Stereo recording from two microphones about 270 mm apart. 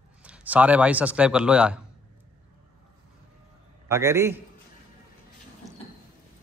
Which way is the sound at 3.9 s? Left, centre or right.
Centre.